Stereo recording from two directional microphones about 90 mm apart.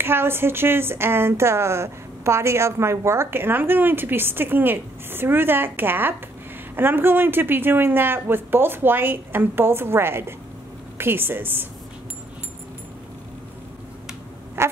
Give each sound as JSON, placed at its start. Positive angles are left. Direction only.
{"t": 0.0, "sound": "a woman's voice", "side_deg": -25}
{"t": 14.6, "sound": "quack", "side_deg": -25}